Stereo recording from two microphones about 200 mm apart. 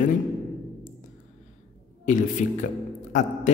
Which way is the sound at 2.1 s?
40° left (ahead or behind).